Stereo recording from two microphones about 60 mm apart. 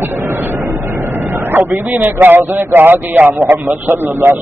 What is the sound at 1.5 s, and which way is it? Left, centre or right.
A man's voice, right.